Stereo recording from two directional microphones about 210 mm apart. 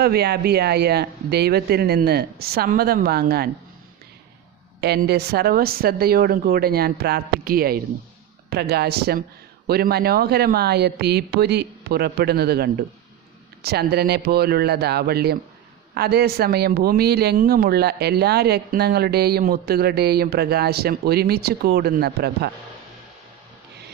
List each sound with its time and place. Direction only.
0.0 s speech: 50° right (ahead or behind)
4.7 s speech: 50° right (ahead or behind)